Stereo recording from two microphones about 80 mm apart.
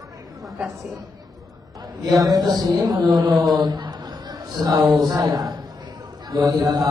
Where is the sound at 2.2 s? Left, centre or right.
Right.